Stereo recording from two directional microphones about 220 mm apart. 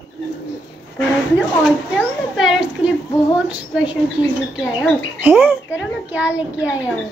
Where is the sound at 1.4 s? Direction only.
Centre (ahead or behind).